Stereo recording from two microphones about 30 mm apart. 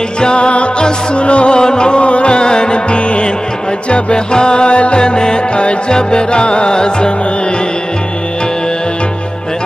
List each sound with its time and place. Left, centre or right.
0.2 s music: left
1.6 s music: left
2.0 s music: left
4.9 s music: left